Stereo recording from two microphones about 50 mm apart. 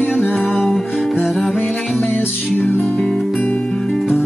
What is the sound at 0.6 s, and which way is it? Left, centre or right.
Music, centre.